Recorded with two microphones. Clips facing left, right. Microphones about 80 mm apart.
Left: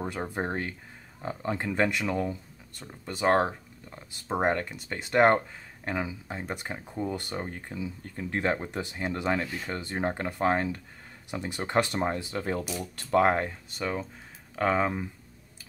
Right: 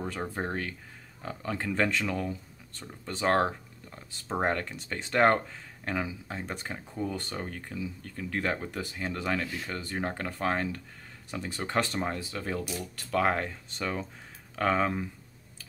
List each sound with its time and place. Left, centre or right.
0.0 s speech: centre
2.8 s speech: centre
13.7 s speech: centre